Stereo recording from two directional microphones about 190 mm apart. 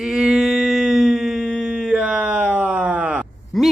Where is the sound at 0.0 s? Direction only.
Centre (ahead or behind).